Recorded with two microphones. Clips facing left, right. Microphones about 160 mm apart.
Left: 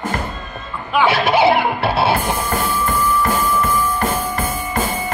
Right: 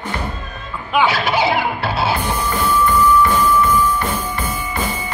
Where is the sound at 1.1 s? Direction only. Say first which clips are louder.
Left 4 dB; 25° left (ahead or behind).